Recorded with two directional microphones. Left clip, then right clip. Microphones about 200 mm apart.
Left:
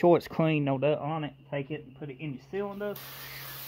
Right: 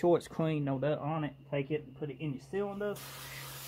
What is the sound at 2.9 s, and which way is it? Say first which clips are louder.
Speech: left 2 dB; 45° left (ahead or behind).